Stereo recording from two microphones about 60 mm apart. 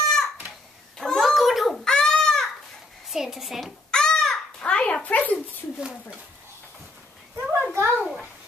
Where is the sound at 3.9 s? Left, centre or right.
Centre.